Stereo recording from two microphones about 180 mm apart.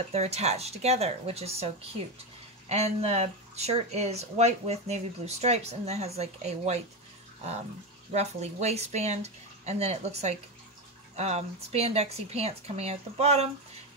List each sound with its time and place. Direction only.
0.1 s speech: 35° right (ahead or behind)
8.1 s speech: 40° right (ahead or behind)